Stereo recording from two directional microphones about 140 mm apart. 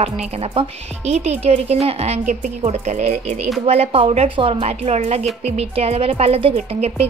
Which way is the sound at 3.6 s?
45° right (ahead or behind).